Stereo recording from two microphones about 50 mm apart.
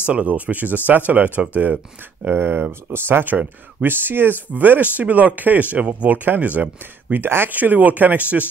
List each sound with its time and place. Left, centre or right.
0.0 s speech: right
2.3 s speech: right
7.2 s speech: right
7.5 s speech: right